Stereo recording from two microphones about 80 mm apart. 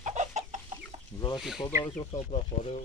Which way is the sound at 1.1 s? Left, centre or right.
Left.